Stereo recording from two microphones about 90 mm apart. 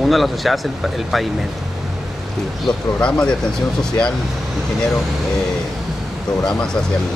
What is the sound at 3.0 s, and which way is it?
Speech, 10° left (ahead or behind).